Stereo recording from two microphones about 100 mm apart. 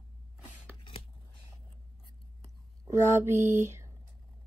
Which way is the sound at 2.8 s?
30° right (ahead or behind).